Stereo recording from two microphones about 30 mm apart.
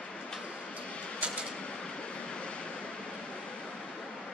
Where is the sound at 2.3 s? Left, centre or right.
Left.